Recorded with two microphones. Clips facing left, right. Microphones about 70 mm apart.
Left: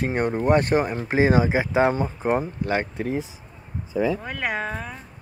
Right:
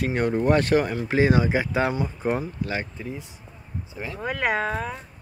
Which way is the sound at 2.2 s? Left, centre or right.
Left.